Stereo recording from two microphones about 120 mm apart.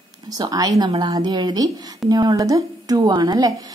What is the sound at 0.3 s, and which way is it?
A woman's voice, 30° right (ahead or behind).